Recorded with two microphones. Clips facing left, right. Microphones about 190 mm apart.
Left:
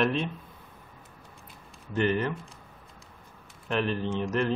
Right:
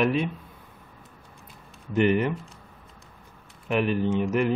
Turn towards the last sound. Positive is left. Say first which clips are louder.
# right 4 dB
turn(degrees=-10)  # may be behind; listen again after turning